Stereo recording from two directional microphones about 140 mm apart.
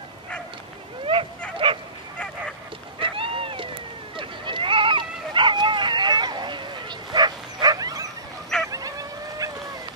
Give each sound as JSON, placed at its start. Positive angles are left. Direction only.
{"t": 1.6, "sound": "bow-wow", "side_deg": -35}
{"t": 3.0, "sound": "cat", "side_deg": -40}
{"t": 4.2, "sound": "dog", "side_deg": -35}
{"t": 8.6, "sound": "a sound", "side_deg": -25}